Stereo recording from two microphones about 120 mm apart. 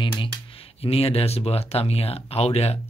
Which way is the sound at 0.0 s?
45° left (ahead or behind).